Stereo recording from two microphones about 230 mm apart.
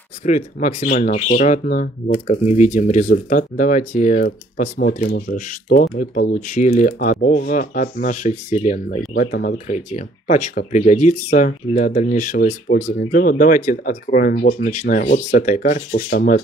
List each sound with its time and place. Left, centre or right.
0.2 s speech: left